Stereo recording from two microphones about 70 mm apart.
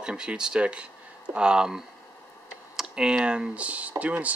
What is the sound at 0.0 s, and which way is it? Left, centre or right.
Speech, centre.